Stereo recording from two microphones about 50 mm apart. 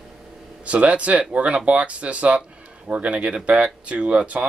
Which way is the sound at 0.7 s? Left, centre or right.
Right.